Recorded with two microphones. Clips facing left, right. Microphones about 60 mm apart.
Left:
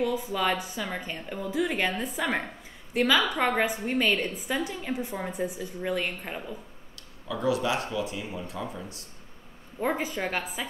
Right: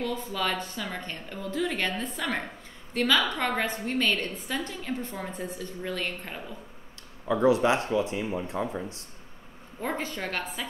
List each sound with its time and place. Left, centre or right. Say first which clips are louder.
0.0 s a woman's voice: left 3 dB; centre
7.2 s speech: right 5 dB; right
9.8 s a woman's voice: left 3 dB; centre